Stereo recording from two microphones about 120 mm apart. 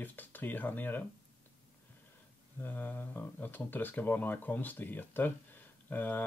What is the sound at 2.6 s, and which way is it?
Speech, 15° left (ahead or behind).